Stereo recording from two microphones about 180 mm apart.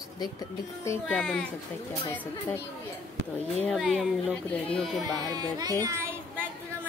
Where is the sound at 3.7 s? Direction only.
Centre (ahead or behind).